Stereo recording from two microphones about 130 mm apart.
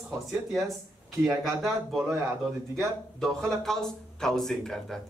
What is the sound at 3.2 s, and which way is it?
Speech, 5° left (ahead or behind).